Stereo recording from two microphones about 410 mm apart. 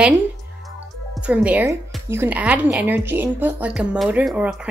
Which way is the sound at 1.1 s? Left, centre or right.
Centre.